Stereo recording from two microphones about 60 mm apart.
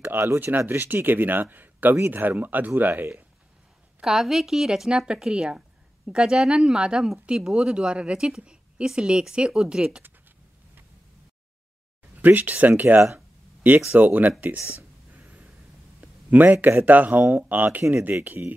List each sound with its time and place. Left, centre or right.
0.0 s speech: right
4.0 s speech: centre
12.2 s speech: right
16.0 s a sound: right
16.6 s speech: right